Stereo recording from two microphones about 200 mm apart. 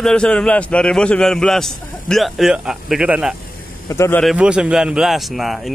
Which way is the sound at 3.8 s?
15° left (ahead or behind).